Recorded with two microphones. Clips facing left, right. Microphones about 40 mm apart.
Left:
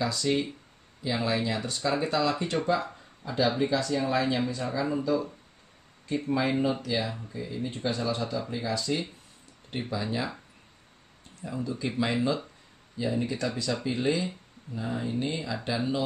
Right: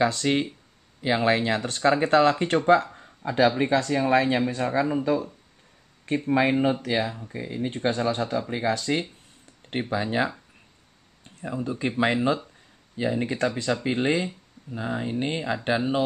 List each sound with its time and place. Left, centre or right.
0.0 s speech: right
11.4 s speech: right